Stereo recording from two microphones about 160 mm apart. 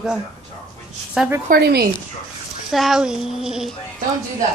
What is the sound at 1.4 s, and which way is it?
Speech, 75° right (ahead or behind).